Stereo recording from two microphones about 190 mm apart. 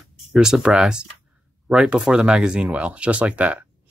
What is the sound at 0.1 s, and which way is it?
Speech, 5° right (ahead or behind).